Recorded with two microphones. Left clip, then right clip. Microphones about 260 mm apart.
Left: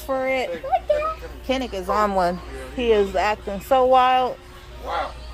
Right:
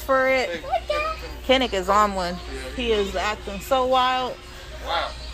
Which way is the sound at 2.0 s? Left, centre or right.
Centre.